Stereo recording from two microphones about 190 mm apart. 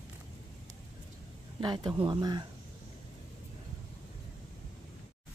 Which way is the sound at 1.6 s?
20° right (ahead or behind).